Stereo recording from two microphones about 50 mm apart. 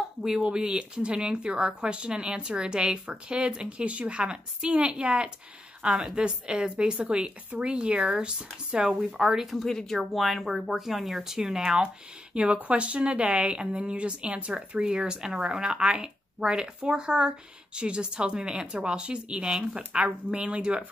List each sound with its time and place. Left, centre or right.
0.2 s a woman's voice: centre
9.7 s speech: centre; by 20.8 s right